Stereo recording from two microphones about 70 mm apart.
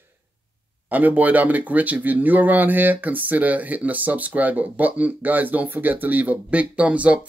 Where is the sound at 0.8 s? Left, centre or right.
Right.